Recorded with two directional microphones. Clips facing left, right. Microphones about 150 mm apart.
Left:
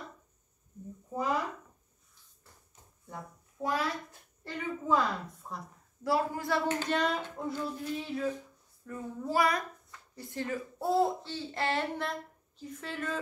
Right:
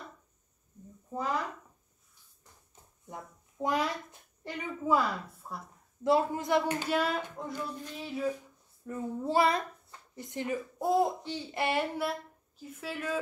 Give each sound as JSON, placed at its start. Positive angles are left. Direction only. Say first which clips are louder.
{"t": 3.1, "sound": "a sound", "louder": "even", "side_deg": -20}
{"t": 4.5, "sound": "a woman's voice", "louder": "right 1 dB", "side_deg": -10}
{"t": 6.0, "sound": "speech", "louder": "right 3 dB", "side_deg": -20}
{"t": 8.8, "sound": "speech", "louder": "right 3 dB", "side_deg": -25}